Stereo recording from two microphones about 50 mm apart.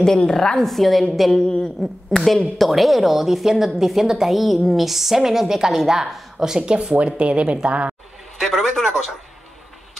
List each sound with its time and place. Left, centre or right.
0.0 s a woman's voice: centre
1.3 s a woman's voice: centre
1.8 s a woman's voice: centre
6.0 s speech: centre
6.4 s speech: centre
8.4 s a woman's voice: centre